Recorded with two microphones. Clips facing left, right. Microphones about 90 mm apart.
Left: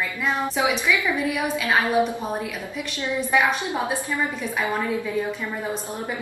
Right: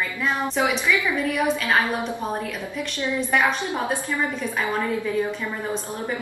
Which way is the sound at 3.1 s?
5° left (ahead or behind).